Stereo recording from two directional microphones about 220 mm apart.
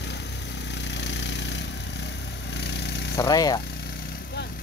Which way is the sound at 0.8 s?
55° left (ahead or behind).